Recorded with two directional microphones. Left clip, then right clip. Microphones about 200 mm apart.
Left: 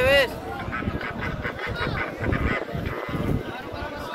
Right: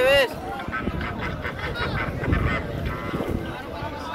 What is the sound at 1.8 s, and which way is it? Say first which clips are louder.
Honk: right 1 dB; 45° right (ahead or behind).